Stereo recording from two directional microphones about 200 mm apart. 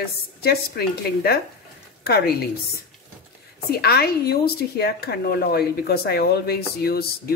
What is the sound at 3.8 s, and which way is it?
A woman's voice, 50° left (ahead or behind).